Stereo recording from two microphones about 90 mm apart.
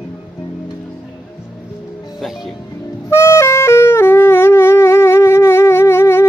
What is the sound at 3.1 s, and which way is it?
Music, 30° left (ahead or behind).